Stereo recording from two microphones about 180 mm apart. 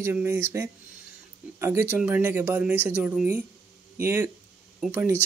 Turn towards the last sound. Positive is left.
turn(degrees=-10)  # may be behind; listen again after turning